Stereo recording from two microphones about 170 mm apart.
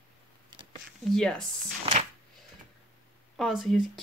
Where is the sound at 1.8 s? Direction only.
40° right (ahead or behind).